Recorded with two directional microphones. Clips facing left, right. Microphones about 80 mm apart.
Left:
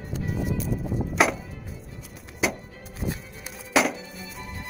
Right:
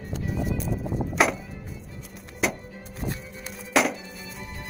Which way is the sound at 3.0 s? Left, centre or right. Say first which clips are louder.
Left 1 dB; right.